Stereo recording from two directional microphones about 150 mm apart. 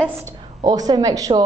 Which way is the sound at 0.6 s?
25° right (ahead or behind).